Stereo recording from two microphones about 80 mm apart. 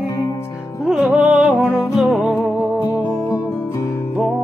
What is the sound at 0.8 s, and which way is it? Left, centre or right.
Music, centre.